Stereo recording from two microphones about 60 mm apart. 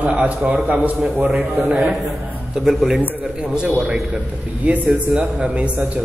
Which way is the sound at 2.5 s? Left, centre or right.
Centre.